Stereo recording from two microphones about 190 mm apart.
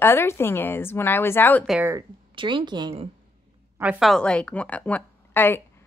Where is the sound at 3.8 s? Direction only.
5° right (ahead or behind); by 5.8 s 10° left (ahead or behind).